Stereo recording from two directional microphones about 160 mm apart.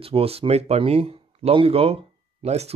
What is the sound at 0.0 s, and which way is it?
Speech, 35° right (ahead or behind).